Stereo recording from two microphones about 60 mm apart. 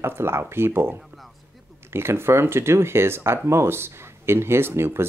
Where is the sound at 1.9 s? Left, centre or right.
Right.